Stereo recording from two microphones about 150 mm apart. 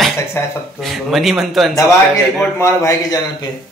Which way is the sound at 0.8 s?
Centre (ahead or behind).